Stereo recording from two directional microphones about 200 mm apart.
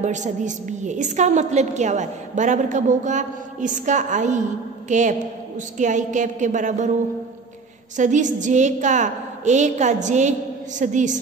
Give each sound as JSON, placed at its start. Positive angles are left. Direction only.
{"t": 0.0, "sound": "a woman's voice", "side_deg": -40}
{"t": 8.0, "sound": "a woman's voice", "side_deg": -40}